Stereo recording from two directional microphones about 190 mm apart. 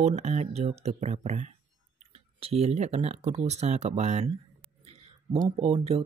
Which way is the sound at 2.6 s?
35° right (ahead or behind).